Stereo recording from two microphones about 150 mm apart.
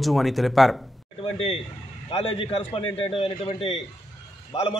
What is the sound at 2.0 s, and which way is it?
A man's voice, 40° left (ahead or behind).